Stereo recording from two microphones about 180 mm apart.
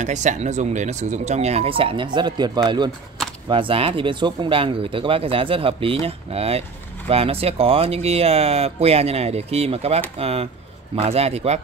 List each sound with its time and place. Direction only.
0.0 s speech: 40° right (ahead or behind)